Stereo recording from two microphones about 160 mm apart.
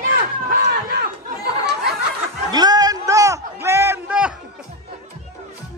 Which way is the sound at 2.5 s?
25° right (ahead or behind).